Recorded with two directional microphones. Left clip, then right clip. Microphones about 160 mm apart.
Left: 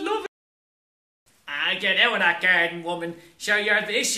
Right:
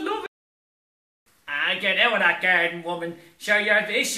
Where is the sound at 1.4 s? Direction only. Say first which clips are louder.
Even; 10° left (ahead or behind).